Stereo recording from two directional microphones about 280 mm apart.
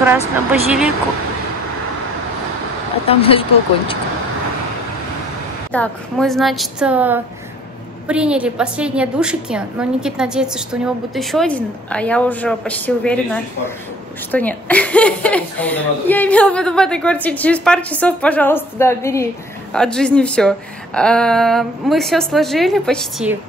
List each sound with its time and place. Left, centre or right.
0.5 s a woman's voice: centre
3.1 s speech: centre
5.7 s a woman's voice: centre